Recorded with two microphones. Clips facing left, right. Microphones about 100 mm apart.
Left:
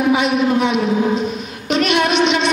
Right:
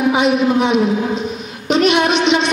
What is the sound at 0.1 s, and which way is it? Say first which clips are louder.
A woman's voice: right 1 dB; 20° right (ahead or behind).